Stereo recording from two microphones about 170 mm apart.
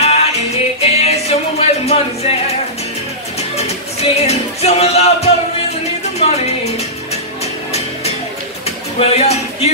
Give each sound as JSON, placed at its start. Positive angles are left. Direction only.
{"t": 0.0, "sound": "music", "side_deg": 40}
{"t": 3.3, "sound": "music", "side_deg": 40}
{"t": 8.6, "sound": "a sound", "side_deg": 40}